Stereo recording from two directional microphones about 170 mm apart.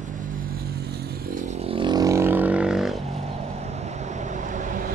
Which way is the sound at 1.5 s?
35° right (ahead or behind).